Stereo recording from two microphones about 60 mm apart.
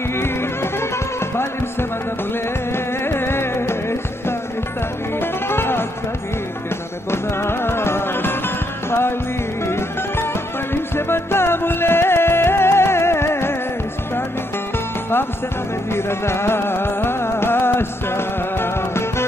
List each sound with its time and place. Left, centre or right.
0.1 s music: left
7.1 s music: left
9.7 s music: left
15.9 s music: left